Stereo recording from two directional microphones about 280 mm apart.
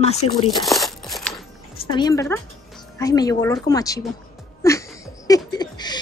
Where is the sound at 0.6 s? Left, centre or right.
Centre.